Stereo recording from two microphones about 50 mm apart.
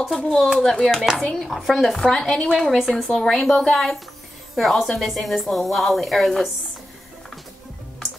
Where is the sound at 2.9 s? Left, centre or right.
Centre.